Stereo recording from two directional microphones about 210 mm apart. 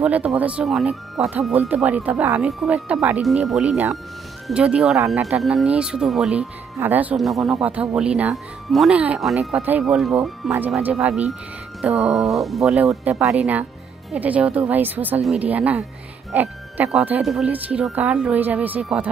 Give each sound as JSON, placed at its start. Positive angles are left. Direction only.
{"t": 0.0, "sound": "speech", "side_deg": -5}
{"t": 4.9, "sound": "speech", "side_deg": -15}
{"t": 5.2, "sound": "speech", "side_deg": 0}